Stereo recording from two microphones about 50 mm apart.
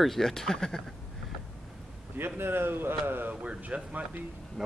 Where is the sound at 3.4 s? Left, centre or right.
Right.